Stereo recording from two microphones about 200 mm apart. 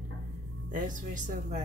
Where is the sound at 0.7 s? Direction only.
40° right (ahead or behind).